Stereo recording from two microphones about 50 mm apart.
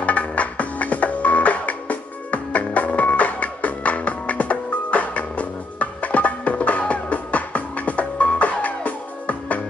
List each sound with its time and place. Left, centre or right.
0.0 s music: left